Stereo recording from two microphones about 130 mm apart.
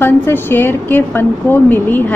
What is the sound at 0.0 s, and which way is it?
A woman's voice, 15° left (ahead or behind).